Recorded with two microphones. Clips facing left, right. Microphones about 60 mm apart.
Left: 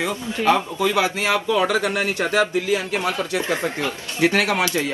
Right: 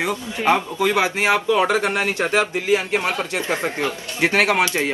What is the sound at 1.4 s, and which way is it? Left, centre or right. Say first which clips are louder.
Speech: right 2 dB; right.